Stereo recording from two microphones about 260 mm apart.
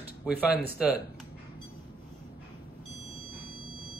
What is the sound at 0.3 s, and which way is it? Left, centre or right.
Speech, left.